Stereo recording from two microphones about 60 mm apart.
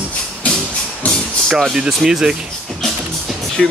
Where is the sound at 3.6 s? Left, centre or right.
Centre.